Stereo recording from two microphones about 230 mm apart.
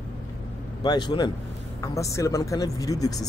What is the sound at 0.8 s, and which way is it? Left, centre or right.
A man's voice, centre.